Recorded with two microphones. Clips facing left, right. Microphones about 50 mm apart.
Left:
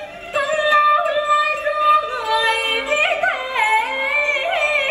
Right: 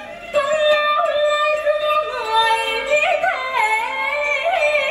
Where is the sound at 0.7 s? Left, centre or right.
Left.